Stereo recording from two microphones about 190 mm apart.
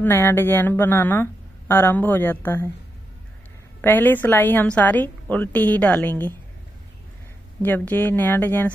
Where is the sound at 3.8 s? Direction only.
10° left (ahead or behind).